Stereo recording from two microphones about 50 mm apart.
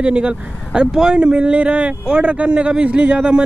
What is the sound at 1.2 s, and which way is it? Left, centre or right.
Speech, right.